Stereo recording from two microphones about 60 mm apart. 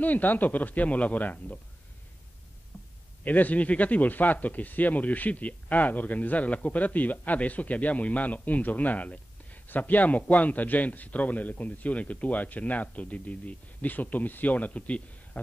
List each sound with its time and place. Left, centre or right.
0.0 s speech: left
2.7 s a sound: centre
3.3 s speech: left